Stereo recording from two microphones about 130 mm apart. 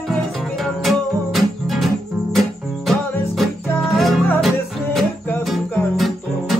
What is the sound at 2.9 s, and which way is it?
Music, centre (ahead or behind).